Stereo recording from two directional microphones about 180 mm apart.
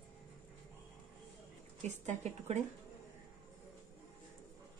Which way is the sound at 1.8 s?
40° right (ahead or behind).